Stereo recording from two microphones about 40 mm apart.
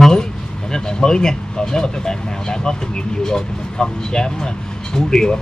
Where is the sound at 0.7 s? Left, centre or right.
Centre.